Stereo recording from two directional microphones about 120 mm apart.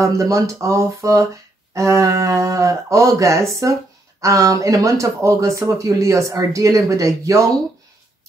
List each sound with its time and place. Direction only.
0.0 s speech: 25° right (ahead or behind)